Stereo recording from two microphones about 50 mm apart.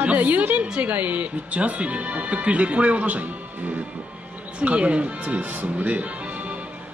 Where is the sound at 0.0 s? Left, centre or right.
Right.